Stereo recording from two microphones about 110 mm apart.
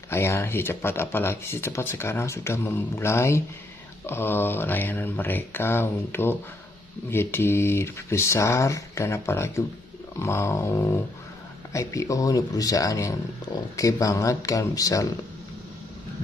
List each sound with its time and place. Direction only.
0.1 s speech: 25° left (ahead or behind)